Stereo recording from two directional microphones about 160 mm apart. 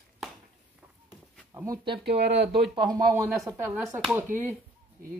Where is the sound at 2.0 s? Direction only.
90° right.